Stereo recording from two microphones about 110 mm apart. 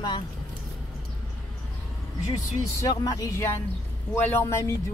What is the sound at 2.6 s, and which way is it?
Speech, 35° left (ahead or behind).